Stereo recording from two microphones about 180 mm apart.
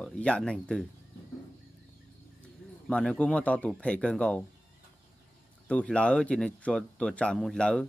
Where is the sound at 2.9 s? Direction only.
5° left (ahead or behind).